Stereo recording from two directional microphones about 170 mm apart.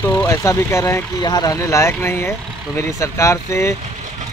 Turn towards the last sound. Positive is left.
turn(degrees=15)  # may be behind; listen again after turning